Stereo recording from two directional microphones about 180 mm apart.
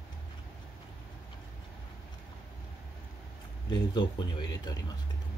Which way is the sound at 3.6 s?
25° left (ahead or behind).